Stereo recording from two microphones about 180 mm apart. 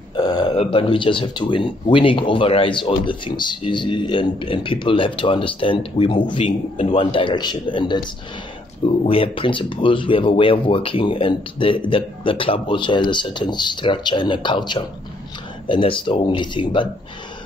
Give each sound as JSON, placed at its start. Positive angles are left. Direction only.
{"t": 0.1, "sound": "burping", "side_deg": 25}
{"t": 0.6, "sound": "speech", "side_deg": 30}